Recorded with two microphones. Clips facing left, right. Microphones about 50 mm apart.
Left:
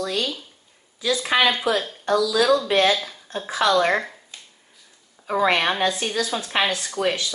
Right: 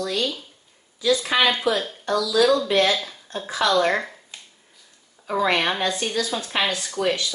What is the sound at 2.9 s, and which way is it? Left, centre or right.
Speech, centre.